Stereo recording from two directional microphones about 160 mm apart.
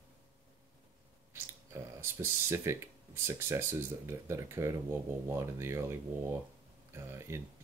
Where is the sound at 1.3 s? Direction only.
15° right (ahead or behind).